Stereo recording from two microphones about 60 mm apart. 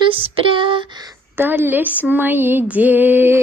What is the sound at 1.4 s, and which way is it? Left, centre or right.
Speech, right.